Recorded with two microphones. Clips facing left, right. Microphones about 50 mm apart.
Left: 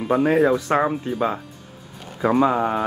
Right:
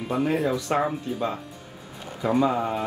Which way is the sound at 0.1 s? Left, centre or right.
Left.